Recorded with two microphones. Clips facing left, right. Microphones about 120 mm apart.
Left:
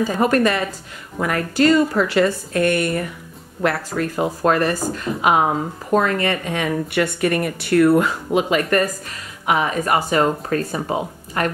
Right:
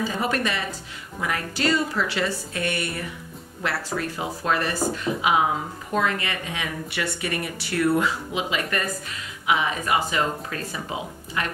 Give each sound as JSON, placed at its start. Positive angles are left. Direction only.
{"t": 0.2, "sound": "speech", "side_deg": 45}